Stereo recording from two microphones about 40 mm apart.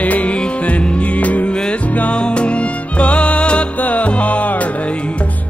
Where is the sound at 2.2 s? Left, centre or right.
Left.